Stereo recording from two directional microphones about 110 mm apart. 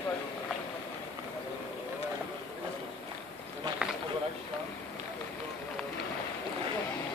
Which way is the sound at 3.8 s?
10° right (ahead or behind).